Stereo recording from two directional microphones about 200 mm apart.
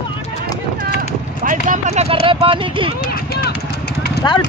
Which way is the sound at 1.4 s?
40° right (ahead or behind).